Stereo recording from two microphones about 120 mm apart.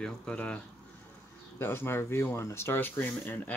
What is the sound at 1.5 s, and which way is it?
Speech, 20° left (ahead or behind).